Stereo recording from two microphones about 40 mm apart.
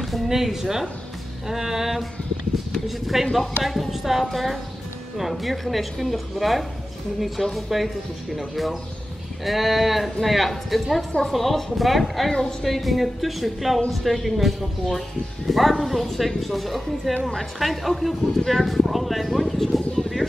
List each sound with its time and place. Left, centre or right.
0.3 s a woman's voice: centre
3.1 s speech: centre
12.3 s speech: centre
12.6 s speech: centre